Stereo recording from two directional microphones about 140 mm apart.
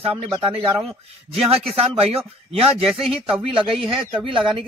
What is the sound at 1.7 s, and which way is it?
Speech, 45° right (ahead or behind).